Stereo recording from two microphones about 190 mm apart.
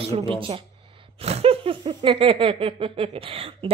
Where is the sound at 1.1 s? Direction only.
35° right (ahead or behind).